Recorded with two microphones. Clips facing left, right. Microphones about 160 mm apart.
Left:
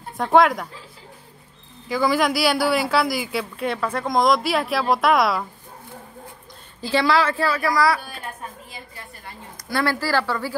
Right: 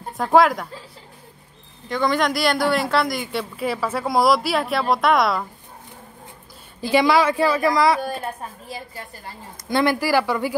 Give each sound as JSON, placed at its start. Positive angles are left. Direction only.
{"t": 0.2, "sound": "a woman's voice", "side_deg": 0}
{"t": 1.9, "sound": "a woman's voice", "side_deg": 5}
{"t": 6.9, "sound": "a woman's voice", "side_deg": -15}
{"t": 8.6, "sound": "a woman's voice", "side_deg": -35}
{"t": 9.7, "sound": "a woman's voice", "side_deg": -20}